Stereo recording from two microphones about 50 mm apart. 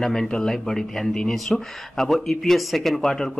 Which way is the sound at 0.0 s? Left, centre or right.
Centre.